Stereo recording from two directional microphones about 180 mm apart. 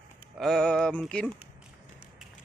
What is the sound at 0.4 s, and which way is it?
Music, centre (ahead or behind).